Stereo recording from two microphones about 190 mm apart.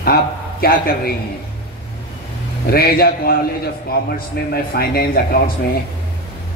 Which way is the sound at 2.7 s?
55° left (ahead or behind).